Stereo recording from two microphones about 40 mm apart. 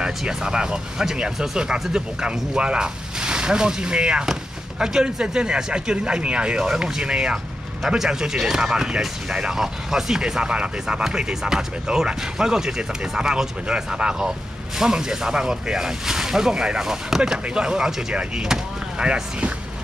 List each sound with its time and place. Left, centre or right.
0.0 s speech: centre
6.6 s speech: centre